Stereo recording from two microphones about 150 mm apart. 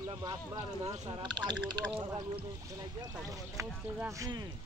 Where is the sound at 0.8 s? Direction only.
30° right (ahead or behind).